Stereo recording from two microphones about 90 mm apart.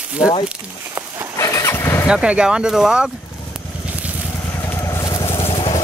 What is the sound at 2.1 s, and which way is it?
Speech, 10° right (ahead or behind).